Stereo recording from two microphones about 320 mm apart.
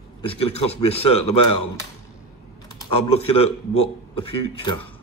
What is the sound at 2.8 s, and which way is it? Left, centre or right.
A man's voice, centre.